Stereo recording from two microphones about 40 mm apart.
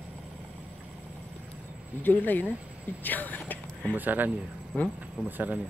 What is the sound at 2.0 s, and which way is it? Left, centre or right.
Speech, left.